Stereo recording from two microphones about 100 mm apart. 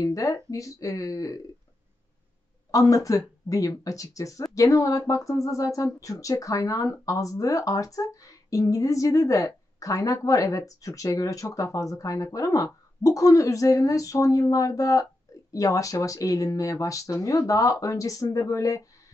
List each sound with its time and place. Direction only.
0.0 s speech: 35° left (ahead or behind)
2.7 s speech: 35° left (ahead or behind)